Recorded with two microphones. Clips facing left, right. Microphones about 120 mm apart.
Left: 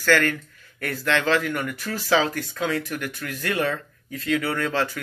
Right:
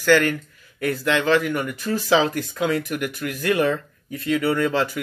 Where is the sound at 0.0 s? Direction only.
15° right (ahead or behind).